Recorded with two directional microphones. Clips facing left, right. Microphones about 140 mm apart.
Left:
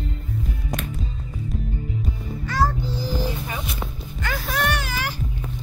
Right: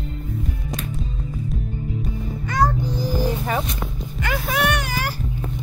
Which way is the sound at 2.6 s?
15° right (ahead or behind).